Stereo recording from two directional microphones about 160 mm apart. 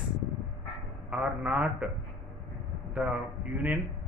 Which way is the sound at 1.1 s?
5° right (ahead or behind).